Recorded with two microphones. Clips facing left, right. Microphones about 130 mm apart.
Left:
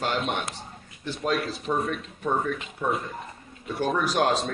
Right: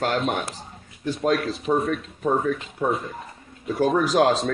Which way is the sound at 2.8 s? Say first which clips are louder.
Right 3 dB; 40° right (ahead or behind).